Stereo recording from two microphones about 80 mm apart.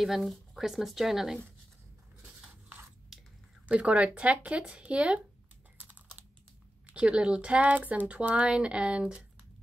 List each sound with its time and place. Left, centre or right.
0.0 s speech: centre
3.1 s squish: centre
3.6 s speech: centre
5.8 s typing: centre
6.9 s speech: centre